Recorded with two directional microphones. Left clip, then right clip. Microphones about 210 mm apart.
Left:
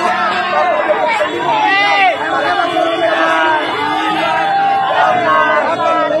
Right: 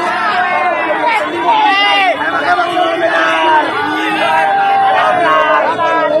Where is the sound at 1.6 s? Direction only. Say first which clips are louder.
Left 1 dB; 50° right (ahead or behind).